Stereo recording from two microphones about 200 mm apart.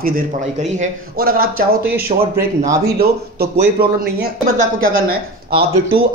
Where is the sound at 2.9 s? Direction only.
55° right (ahead or behind).